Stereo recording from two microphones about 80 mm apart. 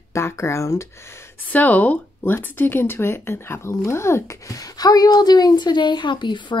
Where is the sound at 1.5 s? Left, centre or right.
Left.